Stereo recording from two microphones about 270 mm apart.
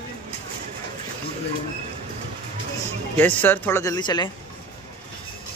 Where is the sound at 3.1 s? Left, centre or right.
Centre.